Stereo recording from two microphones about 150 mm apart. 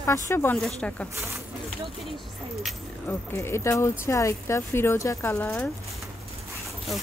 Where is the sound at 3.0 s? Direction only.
15° left (ahead or behind).